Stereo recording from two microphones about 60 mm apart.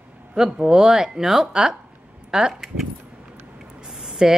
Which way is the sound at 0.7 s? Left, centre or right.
Centre.